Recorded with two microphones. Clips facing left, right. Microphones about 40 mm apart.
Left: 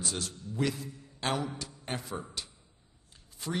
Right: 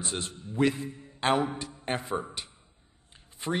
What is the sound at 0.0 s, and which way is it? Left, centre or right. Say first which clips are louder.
A man's voice: right 2 dB; right.